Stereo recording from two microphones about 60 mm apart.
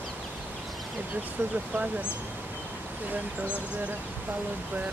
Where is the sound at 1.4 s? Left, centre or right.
Right.